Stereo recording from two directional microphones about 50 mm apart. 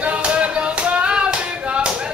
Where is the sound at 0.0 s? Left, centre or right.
Right.